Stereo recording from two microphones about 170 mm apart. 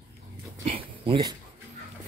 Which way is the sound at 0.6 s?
35° right (ahead or behind).